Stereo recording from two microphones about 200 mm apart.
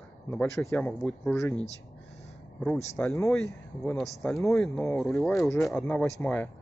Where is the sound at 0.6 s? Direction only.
5° left (ahead or behind).